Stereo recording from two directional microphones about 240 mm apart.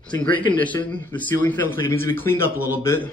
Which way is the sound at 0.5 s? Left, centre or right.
Centre.